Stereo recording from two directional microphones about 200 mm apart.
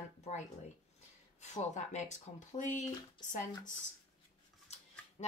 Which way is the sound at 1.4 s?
35° left (ahead or behind).